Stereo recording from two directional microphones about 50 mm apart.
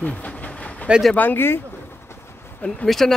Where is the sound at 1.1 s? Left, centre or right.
Left.